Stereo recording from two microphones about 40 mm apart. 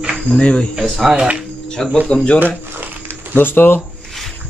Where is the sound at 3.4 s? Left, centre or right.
Left.